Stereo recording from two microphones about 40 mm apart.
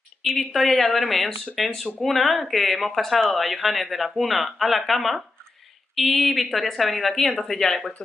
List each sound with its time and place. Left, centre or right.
0.5 s speech: centre